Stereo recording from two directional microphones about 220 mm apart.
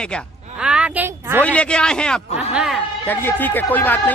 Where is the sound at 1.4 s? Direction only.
5° left (ahead or behind).